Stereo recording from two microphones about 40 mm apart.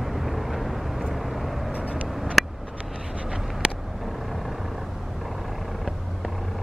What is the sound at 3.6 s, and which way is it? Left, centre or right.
Vehicle, right.